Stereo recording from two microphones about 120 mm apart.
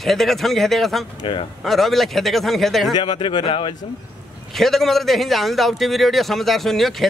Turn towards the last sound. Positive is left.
turn(degrees=0)  # may be behind; listen again after turning